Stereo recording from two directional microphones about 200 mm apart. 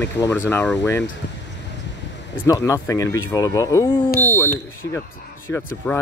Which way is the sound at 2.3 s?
20° left (ahead or behind).